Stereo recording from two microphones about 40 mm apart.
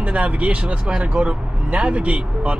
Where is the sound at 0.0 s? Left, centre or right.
Right.